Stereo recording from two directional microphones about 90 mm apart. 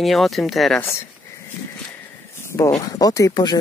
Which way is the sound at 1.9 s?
30° left (ahead or behind).